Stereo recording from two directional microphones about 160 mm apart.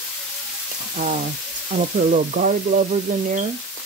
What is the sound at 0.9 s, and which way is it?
Frying, 55° right (ahead or behind).